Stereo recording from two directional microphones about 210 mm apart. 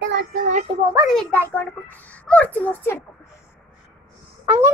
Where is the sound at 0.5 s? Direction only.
35° right (ahead or behind).